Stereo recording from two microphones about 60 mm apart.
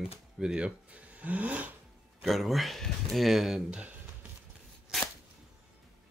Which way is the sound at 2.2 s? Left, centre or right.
Centre.